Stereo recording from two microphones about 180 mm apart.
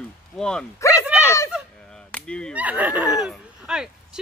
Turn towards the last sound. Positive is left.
turn(degrees=-5)  # may be behind; listen again after turning